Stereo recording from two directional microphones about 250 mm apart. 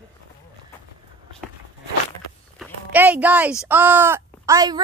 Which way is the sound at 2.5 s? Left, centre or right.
Centre.